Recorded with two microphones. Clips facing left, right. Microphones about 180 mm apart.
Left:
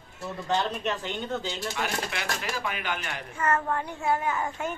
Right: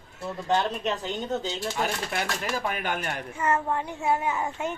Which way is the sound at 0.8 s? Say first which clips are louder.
Right 2 dB; 40° right (ahead or behind).